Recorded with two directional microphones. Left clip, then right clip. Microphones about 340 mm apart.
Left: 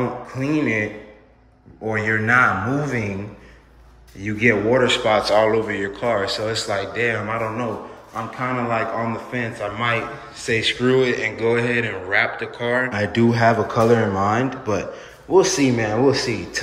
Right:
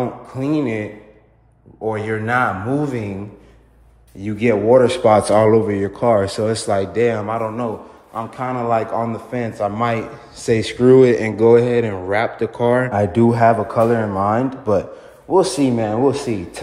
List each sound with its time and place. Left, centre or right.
0.3 s a man's voice: centre
1.9 s a man's voice: centre
4.2 s a man's voice: centre
12.9 s a man's voice: centre